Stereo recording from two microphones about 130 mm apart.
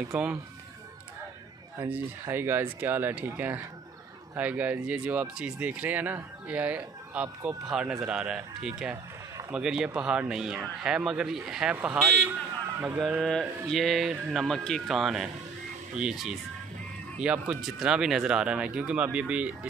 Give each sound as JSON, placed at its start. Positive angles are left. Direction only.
{"t": 0.1, "sound": "speech", "side_deg": -10}
{"t": 1.9, "sound": "speech", "side_deg": -15}